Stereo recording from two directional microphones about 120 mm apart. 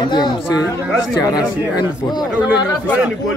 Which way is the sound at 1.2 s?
35° left (ahead or behind).